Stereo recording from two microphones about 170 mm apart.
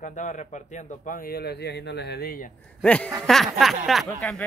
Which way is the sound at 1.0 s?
60° left (ahead or behind).